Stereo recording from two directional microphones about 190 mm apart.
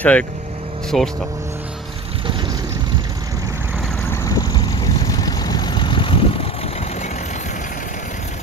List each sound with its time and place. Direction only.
0.0 s speech: 5° left (ahead or behind)
4.1 s vehicle: 20° left (ahead or behind)